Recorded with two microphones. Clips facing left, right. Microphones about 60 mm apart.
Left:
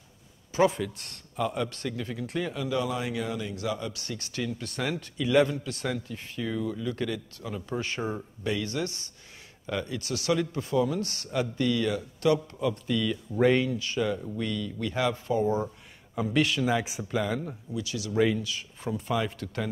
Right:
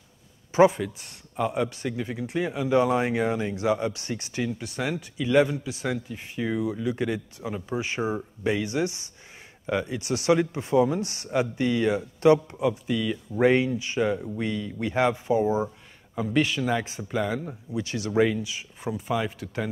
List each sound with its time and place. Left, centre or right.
0.7 s a man's voice: centre
2.7 s a man's voice: right
15.2 s speech: centre
16.2 s speech: centre
17.7 s speech: right
18.2 s speech: centre
18.9 s speech: centre